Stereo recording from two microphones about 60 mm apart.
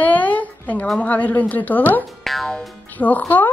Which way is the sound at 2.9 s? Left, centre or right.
Left.